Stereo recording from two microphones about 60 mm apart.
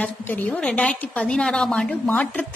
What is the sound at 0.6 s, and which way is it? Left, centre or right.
A woman's voice, centre.